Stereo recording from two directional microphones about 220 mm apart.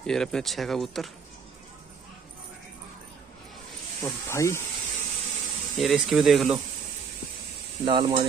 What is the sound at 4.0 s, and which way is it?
Speech, 10° left (ahead or behind).